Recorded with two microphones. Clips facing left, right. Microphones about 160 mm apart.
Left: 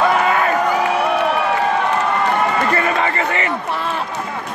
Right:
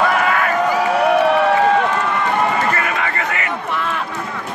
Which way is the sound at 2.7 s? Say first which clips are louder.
Left 3 dB; 30° left (ahead or behind).